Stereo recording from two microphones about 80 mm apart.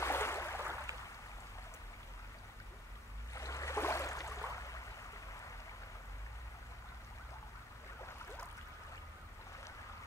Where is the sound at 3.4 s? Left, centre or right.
Left.